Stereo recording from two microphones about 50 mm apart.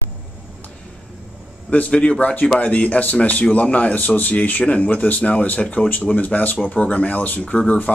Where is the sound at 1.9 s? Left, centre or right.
Left.